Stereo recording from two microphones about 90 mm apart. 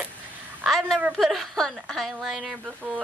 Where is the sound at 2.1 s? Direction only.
5° right (ahead or behind).